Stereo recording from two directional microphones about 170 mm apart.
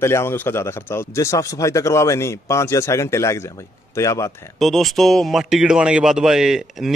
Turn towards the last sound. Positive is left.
turn(degrees=0)  # may be behind; listen again after turning